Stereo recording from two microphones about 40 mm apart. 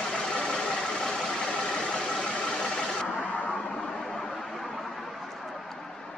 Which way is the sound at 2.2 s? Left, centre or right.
Centre.